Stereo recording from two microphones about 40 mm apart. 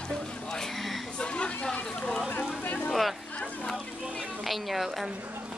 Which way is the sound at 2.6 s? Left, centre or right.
Left.